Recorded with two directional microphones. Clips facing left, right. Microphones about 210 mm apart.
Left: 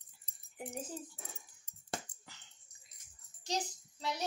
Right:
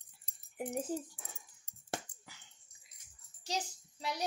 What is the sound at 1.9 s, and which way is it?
Dog, 10° right (ahead or behind).